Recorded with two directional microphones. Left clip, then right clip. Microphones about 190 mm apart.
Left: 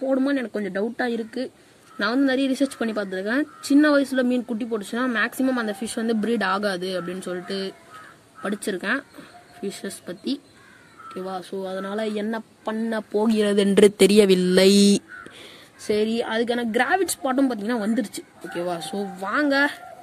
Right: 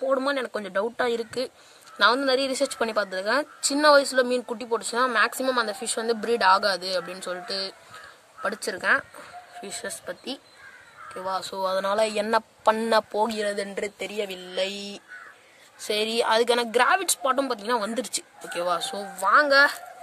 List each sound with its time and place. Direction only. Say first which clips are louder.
0.2 s a woman's voice: left 2 dB; 15° right (ahead or behind)
11.1 s a woman's voice: right 2 dB; 10° right (ahead or behind)
11.5 s speech: right 6 dB; 30° right (ahead or behind)
13.3 s speech: left 6 dB; 15° left (ahead or behind)
13.7 s speech: left 16 dB; 50° left (ahead or behind)
16.1 s a woman's voice: right 3 dB; 20° right (ahead or behind)
17.9 s a woman's voice: left 2 dB; 25° right (ahead or behind)